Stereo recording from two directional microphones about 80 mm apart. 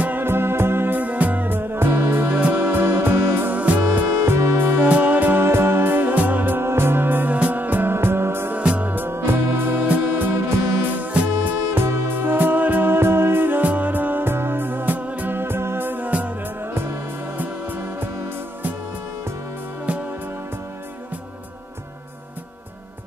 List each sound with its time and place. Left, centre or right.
0.0 s music: right
8.5 s music: centre